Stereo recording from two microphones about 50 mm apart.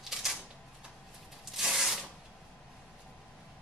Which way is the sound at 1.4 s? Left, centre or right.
Centre.